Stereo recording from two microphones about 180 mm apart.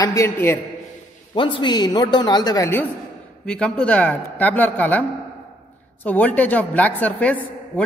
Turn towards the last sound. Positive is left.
turn(degrees=10)  # may be behind; listen again after turning